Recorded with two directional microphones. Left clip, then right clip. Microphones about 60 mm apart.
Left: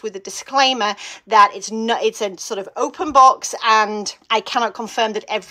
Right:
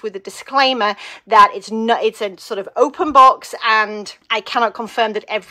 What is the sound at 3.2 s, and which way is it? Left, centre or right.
Speech, left.